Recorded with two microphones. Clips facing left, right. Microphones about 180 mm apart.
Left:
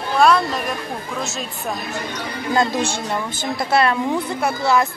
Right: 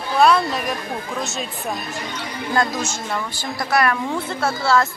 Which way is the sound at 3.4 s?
25° left (ahead or behind).